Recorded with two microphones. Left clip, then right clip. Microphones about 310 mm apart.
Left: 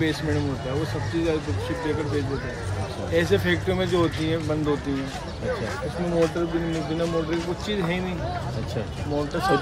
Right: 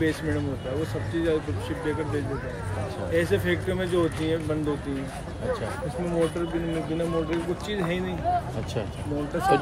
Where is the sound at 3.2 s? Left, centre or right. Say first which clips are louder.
Left 3 dB; centre.